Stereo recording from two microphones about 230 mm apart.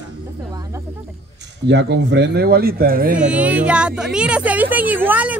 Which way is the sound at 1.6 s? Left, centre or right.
Right.